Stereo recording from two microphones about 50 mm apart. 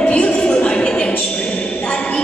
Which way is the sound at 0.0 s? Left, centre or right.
Left.